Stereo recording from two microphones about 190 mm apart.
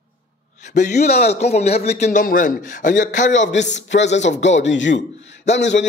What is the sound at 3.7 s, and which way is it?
A man's voice, 70° left (ahead or behind).